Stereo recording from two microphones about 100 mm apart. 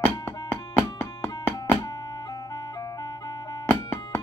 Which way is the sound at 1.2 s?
25° left (ahead or behind).